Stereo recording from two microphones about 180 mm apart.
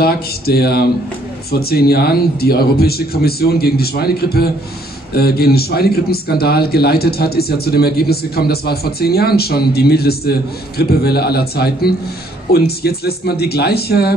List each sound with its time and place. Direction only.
0.0 s a man's voice: 60° left (ahead or behind)